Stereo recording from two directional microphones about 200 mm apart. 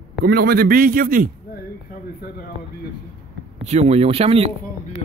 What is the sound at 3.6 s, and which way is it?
Speech, 35° right (ahead or behind).